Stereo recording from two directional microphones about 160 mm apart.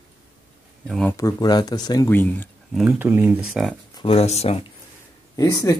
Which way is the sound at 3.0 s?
10° right (ahead or behind).